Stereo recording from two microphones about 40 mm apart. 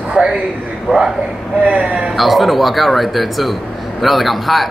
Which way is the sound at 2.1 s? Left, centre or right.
Centre.